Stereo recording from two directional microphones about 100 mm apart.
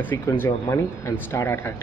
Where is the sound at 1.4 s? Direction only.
20° left (ahead or behind).